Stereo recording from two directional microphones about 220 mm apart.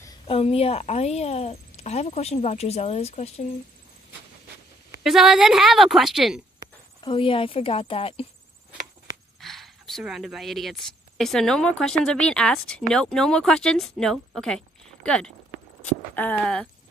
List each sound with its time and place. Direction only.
0.3 s a woman's voice: 25° left (ahead or behind)
5.0 s speech: centre (ahead or behind)
7.0 s a woman's voice: 20° left (ahead or behind)
9.4 s speech: centre (ahead or behind)
16.3 s speech: 5° left (ahead or behind)